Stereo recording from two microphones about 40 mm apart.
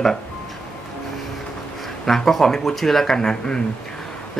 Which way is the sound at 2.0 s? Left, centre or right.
Centre.